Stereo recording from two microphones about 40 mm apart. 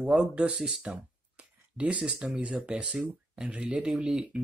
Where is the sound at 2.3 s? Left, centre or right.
Right.